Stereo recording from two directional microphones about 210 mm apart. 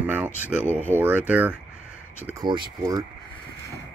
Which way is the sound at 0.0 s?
5° right (ahead or behind).